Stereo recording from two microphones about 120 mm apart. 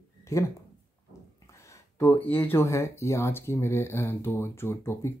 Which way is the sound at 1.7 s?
20° left (ahead or behind).